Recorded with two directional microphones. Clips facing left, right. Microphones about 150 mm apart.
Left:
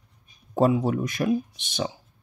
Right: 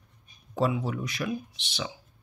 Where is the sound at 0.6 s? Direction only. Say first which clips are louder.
Left 6 dB; 45° left (ahead or behind).